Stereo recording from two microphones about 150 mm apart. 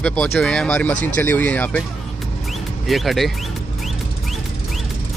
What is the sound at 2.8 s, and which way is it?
Speech, centre (ahead or behind).